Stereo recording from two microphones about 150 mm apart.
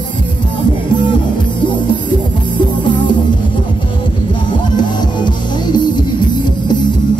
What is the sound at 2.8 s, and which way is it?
Music, 30° left (ahead or behind).